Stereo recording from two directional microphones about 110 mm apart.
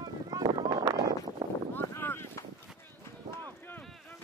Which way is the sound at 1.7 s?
20° left (ahead or behind).